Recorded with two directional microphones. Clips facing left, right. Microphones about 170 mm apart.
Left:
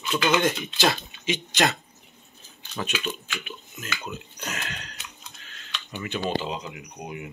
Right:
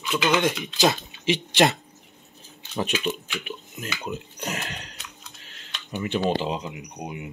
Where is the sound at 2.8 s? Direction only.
25° right (ahead or behind).